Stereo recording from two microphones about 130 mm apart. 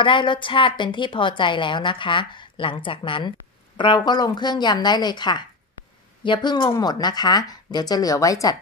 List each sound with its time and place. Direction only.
0.0 s a woman's voice: 40° left (ahead or behind)